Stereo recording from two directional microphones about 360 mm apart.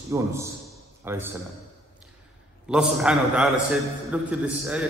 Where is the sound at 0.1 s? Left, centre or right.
Centre.